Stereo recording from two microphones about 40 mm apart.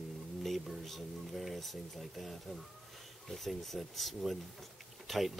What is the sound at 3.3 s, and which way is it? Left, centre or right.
Speech, centre.